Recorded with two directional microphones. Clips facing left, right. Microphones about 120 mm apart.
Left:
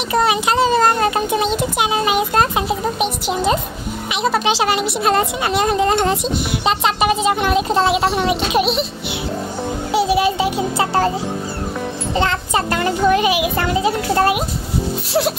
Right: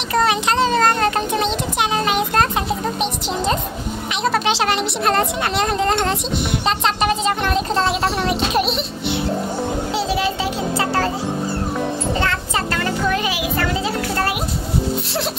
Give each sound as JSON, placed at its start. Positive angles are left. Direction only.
{"t": 0.1, "sound": "a child's voice", "side_deg": 10}
{"t": 9.9, "sound": "a child's voice", "side_deg": 15}
{"t": 12.2, "sound": "a child's voice", "side_deg": 20}